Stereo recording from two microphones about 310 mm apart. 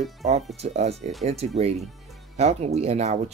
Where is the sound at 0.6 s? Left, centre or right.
Centre.